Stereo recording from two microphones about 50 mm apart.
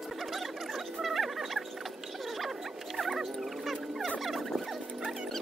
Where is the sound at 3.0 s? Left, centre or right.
Centre.